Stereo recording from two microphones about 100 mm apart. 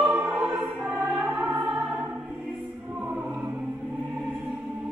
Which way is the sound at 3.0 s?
15° right (ahead or behind).